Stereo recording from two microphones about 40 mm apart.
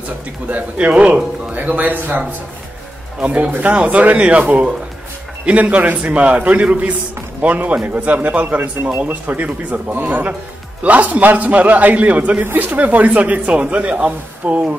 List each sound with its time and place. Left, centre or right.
0.5 s speech: right
3.2 s speech: right